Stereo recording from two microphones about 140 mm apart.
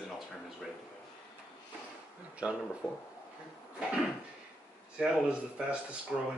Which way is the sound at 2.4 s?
10° right (ahead or behind).